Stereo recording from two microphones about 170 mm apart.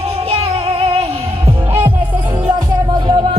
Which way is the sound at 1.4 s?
15° right (ahead or behind).